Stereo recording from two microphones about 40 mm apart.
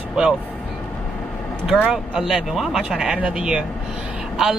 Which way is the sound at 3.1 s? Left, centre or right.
Right.